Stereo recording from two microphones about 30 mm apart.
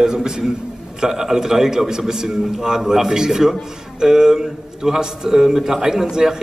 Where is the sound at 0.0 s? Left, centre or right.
Right.